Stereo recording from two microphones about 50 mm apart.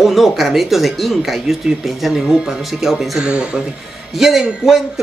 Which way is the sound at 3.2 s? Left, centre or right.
Centre.